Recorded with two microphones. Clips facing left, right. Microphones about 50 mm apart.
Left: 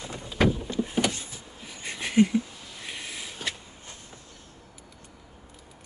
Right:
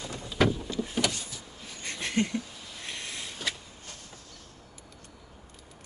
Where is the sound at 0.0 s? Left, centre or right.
Left.